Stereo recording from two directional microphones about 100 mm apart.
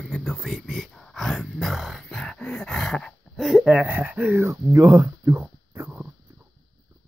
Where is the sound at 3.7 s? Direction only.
20° right (ahead or behind).